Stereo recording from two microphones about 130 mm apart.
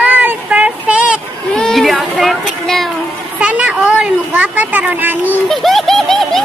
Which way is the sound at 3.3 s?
10° right (ahead or behind).